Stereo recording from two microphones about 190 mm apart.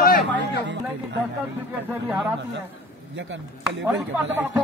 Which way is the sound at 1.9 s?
10° right (ahead or behind).